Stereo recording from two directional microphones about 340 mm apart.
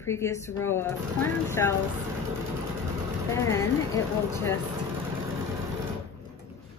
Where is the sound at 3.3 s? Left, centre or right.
Centre.